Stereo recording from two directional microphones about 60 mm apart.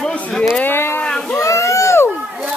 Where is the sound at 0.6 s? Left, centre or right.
Left.